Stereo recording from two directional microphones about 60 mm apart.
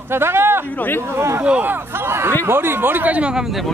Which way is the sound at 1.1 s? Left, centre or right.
Right.